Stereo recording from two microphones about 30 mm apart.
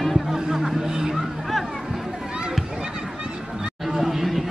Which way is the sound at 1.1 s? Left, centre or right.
Centre.